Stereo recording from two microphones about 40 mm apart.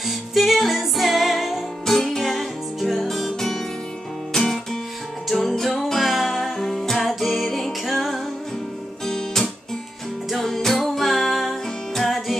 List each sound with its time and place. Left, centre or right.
0.0 s music: centre
9.0 s guitar: centre
10.3 s music: centre